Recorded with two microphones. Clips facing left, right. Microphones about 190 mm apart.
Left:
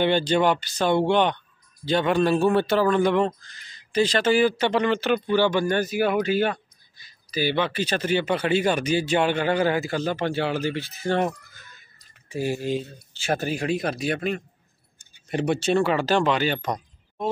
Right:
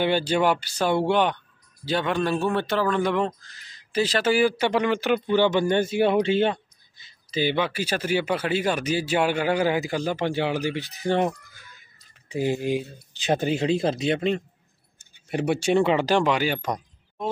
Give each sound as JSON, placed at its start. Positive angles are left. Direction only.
{"t": 0.0, "sound": "speech", "side_deg": -10}
{"t": 7.5, "sound": "speech", "side_deg": -10}
{"t": 15.0, "sound": "speech", "side_deg": -10}